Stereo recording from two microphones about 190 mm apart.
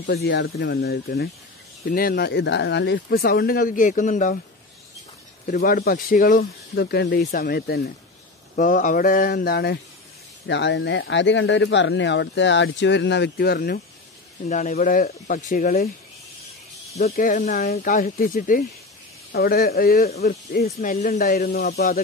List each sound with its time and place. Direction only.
0.0 s speech: 60° left (ahead or behind); by 4.4 s 45° left (ahead or behind)
5.5 s speech: 50° left (ahead or behind)
8.5 s speech: 45° left (ahead or behind)
10.4 s speech: 70° left (ahead or behind)
14.5 s speech: 40° left (ahead or behind)
17.1 s speech: 45° left (ahead or behind)